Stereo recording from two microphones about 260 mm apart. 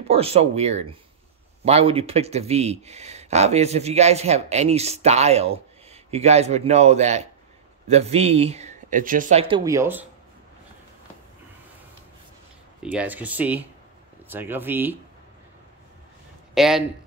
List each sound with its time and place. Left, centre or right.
0.1 s speech: right
12.8 s speech: centre
16.5 s speech: centre